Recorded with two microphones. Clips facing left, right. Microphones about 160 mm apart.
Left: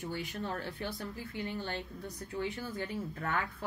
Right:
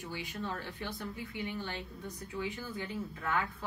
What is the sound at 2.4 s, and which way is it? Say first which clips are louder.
Speech: left 2 dB; 50° left (ahead or behind).